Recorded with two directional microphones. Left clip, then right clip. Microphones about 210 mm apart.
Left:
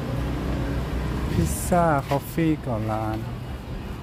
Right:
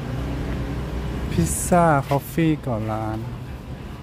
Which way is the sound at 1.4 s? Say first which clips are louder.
Right 4 dB; 20° right (ahead or behind).